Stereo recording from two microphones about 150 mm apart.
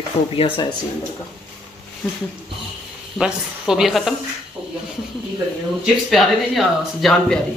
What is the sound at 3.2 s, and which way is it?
Speech, 5° right (ahead or behind).